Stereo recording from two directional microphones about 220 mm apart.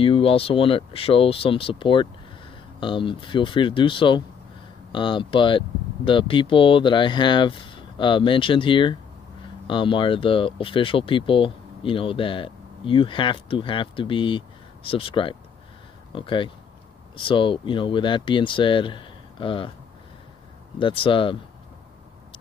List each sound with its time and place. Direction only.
0.0 s speech: 25° left (ahead or behind)
20.8 s speech: 25° left (ahead or behind)